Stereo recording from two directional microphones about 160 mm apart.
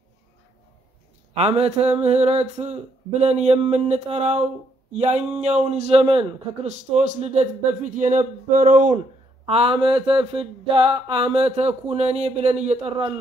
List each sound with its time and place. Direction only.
1.3 s mantra: 40° right (ahead or behind)
4.9 s a man's voice: 40° right (ahead or behind)
9.5 s mantra: 35° right (ahead or behind)